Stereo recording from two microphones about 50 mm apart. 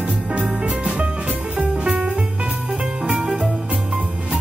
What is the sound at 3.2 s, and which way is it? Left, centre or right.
Music, right.